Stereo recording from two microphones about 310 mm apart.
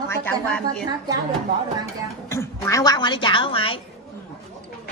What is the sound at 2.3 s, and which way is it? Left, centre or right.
A woman's voice, centre.